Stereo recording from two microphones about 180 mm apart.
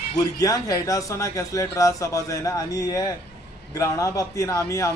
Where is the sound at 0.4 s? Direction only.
20° left (ahead or behind).